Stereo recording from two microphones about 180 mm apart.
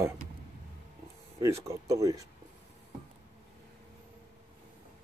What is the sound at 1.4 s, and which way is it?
Speech, 15° right (ahead or behind).